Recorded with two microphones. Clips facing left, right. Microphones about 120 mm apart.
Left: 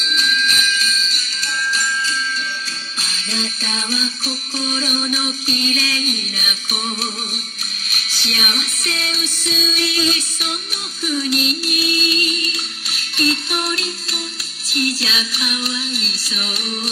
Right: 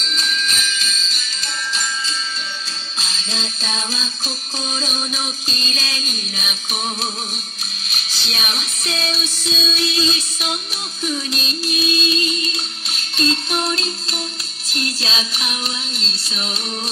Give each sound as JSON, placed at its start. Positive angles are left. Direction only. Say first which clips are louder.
{"t": 0.0, "sound": "music", "louder": "left 4 dB", "side_deg": -35}
{"t": 1.7, "sound": "music", "louder": "left 3 dB", "side_deg": -25}
{"t": 7.9, "sound": "music", "louder": "left 2 dB", "side_deg": -25}